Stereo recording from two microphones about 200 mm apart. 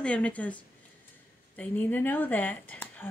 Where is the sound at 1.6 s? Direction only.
10° left (ahead or behind).